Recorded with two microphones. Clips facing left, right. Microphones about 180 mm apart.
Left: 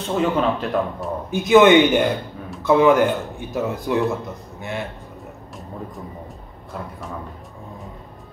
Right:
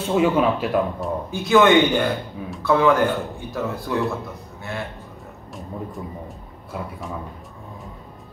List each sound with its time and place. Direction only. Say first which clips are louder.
0.0 s speech: right 2 dB; 10° right (ahead or behind)
1.3 s speech: left 3 dB; 20° left (ahead or behind)